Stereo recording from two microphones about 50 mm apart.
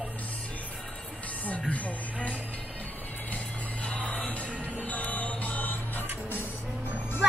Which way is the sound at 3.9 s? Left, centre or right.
Left.